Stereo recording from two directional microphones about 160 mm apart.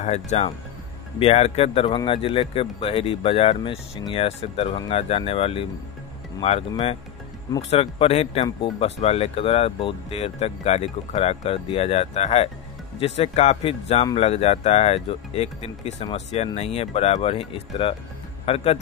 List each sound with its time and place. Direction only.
0.0 s speech: 45° left (ahead or behind)
7.7 s speech: 40° left (ahead or behind)